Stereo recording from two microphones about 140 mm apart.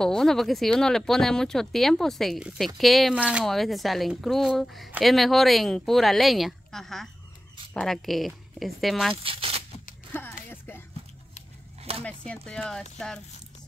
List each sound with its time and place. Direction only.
0.0 s speech: 5° left (ahead or behind)
9.1 s speech: 40° right (ahead or behind)
10.1 s speech: 15° left (ahead or behind)
12.0 s speech: 10° left (ahead or behind)